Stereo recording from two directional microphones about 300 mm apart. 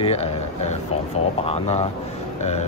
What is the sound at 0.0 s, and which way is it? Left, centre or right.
Speech, left.